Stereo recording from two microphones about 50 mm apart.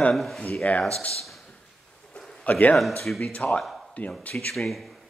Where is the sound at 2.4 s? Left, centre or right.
Left.